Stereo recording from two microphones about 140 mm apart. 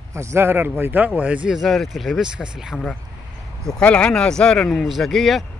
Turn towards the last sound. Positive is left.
turn(degrees=0)  # may be behind; listen again after turning